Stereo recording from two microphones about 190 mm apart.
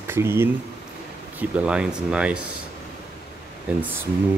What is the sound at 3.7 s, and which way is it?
Speech, 5° right (ahead or behind).